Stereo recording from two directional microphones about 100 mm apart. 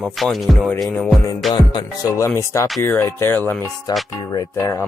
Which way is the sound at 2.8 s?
25° left (ahead or behind).